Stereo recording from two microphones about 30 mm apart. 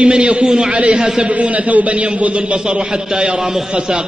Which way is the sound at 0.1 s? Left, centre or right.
Right.